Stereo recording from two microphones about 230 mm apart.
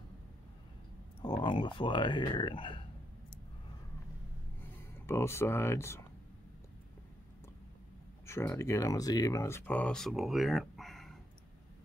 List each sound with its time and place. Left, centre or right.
1.2 s speech: centre
4.6 s speech: centre
8.3 s speech: centre